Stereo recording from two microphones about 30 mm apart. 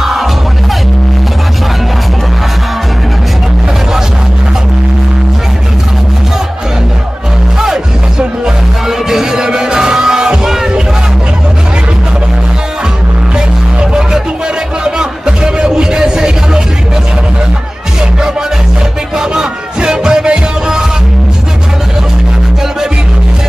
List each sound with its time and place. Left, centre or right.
0.0 s music: centre
8.8 s music: centre
14.9 s music: right
19.1 s music: right